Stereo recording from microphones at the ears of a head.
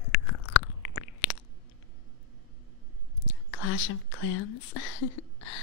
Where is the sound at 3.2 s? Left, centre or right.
Left.